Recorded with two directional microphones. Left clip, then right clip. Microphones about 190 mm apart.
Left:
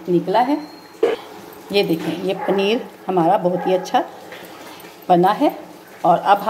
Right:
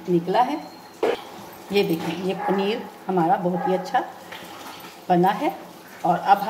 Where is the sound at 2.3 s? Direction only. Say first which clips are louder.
Left 5 dB; 25° left (ahead or behind).